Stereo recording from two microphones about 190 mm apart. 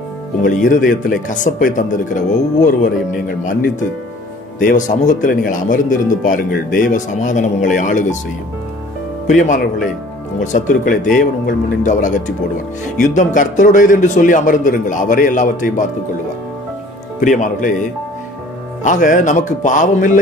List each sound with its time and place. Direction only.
0.4 s speech: 45° left (ahead or behind)
4.6 s speech: 45° left (ahead or behind)
9.3 s speech: 40° left (ahead or behind)
17.2 s speech: 40° left (ahead or behind)